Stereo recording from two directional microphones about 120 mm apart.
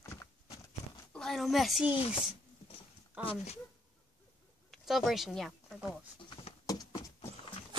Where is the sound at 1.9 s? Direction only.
45° left (ahead or behind).